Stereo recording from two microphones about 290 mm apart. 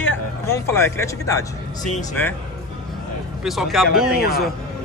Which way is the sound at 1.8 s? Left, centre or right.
Left.